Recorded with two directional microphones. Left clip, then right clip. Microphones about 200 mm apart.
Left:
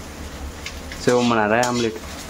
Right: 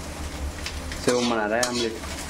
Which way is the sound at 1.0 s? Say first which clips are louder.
Left 5 dB; 20° left (ahead or behind).